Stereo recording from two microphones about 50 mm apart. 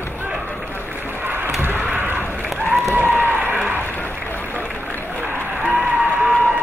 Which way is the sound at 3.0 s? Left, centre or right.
Right.